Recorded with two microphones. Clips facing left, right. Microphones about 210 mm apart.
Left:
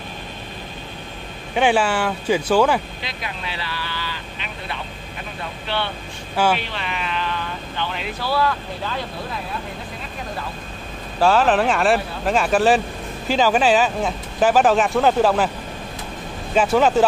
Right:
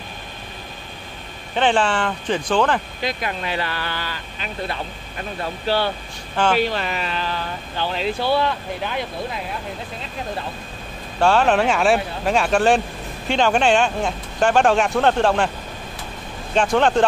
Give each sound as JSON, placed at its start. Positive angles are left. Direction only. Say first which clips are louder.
{"t": 1.5, "sound": "speech", "louder": "left 1 dB", "side_deg": 10}
{"t": 3.0, "sound": "speech", "louder": "right 6 dB", "side_deg": -50}
{"t": 6.3, "sound": "speech", "louder": "even", "side_deg": 10}
{"t": 6.6, "sound": "speech", "louder": "right 6 dB", "side_deg": -40}
{"t": 11.1, "sound": "speech", "louder": "even", "side_deg": 0}
{"t": 16.5, "sound": "speech", "louder": "left 1 dB", "side_deg": 5}